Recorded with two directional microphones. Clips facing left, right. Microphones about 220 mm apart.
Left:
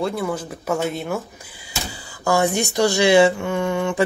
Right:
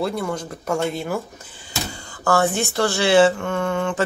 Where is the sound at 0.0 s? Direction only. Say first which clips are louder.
Left 1 dB; 5° left (ahead or behind).